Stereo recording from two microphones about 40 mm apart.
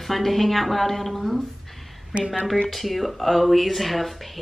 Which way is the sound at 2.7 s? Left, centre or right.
Centre.